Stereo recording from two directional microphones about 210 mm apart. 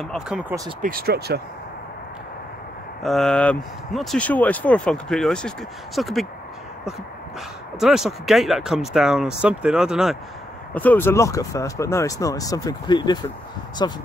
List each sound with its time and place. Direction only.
0.0 s speech: centre (ahead or behind)
0.8 s speech: 45° right (ahead or behind)
3.0 s speech: centre (ahead or behind)
7.8 s speech: centre (ahead or behind); by 14.0 s 20° left (ahead or behind)